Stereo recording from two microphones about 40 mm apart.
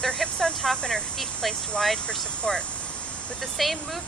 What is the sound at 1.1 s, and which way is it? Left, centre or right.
Speech, centre.